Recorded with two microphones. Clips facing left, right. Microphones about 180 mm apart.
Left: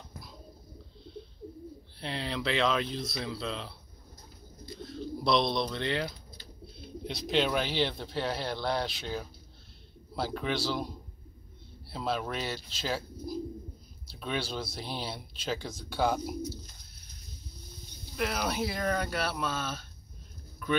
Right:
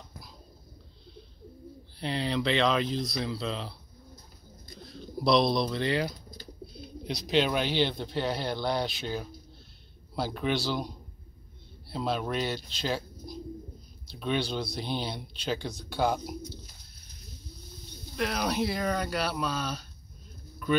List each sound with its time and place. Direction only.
2.0 s speech: centre (ahead or behind)
4.8 s speech: centre (ahead or behind)
6.3 s bird: 40° right (ahead or behind)
7.2 s speech: centre (ahead or behind)
11.9 s speech: centre (ahead or behind)
18.1 s speech: centre (ahead or behind)